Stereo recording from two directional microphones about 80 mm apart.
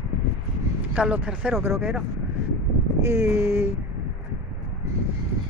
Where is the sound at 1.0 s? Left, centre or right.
Centre.